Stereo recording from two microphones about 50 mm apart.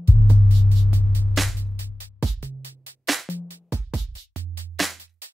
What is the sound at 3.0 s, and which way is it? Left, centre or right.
Music, centre.